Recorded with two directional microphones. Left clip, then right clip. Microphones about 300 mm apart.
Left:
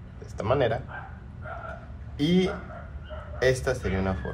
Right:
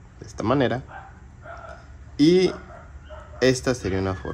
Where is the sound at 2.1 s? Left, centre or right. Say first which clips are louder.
Right 8 dB; right.